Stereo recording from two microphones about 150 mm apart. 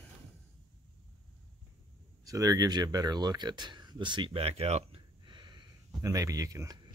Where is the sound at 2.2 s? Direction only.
20° right (ahead or behind).